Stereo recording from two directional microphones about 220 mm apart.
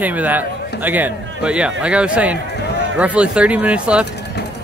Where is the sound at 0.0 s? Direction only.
5° right (ahead or behind).